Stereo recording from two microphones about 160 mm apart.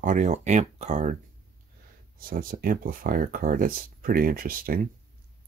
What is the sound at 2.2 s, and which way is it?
Speech, 65° right (ahead or behind).